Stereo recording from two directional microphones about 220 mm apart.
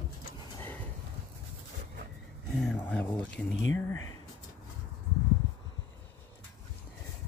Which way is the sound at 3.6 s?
65° left (ahead or behind).